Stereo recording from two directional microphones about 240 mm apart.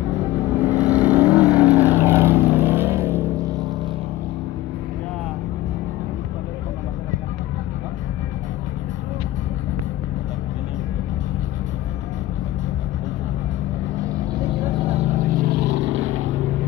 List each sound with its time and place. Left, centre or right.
0.7 s vehicle: centre
14.8 s vehicle: right